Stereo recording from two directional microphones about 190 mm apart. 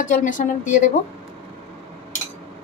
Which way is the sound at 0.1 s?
40° left (ahead or behind).